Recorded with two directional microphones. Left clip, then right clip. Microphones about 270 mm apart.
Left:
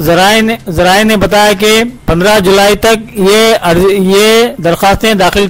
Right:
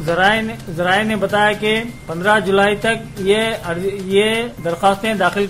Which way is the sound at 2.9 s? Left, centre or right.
Left.